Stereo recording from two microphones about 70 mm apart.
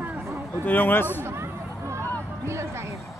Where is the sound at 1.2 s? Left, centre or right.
Right.